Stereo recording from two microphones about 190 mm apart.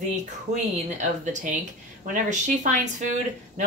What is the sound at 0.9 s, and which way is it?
Speech, 40° right (ahead or behind).